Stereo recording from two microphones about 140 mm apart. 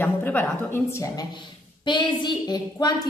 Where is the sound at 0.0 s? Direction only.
15° left (ahead or behind).